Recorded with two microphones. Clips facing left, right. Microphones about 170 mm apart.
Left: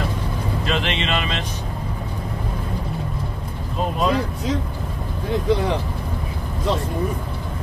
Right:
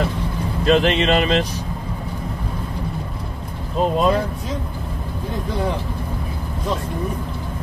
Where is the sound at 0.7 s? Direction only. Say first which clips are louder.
Right 9 dB; 40° right (ahead or behind).